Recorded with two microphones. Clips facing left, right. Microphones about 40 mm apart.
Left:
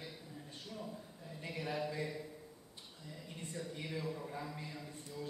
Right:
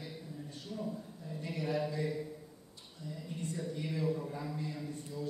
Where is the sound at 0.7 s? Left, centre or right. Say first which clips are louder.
Right 7 dB; centre.